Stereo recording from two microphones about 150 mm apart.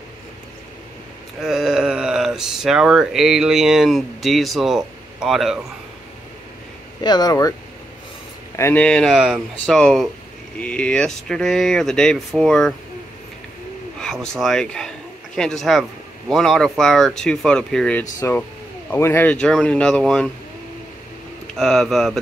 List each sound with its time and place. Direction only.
1.4 s speech: 5° right (ahead or behind)
7.0 s speech: 30° left (ahead or behind)
8.5 s speech: 15° left (ahead or behind)
14.0 s speech: 5° left (ahead or behind)
18.9 s speech: 15° left (ahead or behind)
21.5 s speech: 5° left (ahead or behind)